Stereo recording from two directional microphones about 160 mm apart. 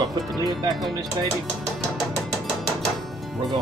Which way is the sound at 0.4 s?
25° right (ahead or behind).